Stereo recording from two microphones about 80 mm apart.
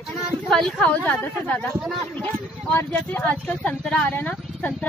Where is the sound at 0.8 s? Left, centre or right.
Centre.